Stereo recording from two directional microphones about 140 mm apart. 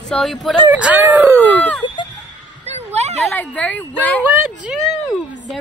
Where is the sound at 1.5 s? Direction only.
10° left (ahead or behind).